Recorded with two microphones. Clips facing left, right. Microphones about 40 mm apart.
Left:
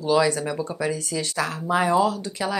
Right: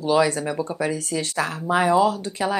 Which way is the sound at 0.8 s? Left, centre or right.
Right.